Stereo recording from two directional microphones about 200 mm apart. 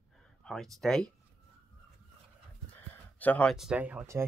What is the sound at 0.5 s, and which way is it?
Speech, centre (ahead or behind).